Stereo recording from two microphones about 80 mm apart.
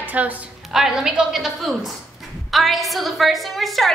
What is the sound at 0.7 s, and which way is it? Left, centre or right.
A woman's voice, centre.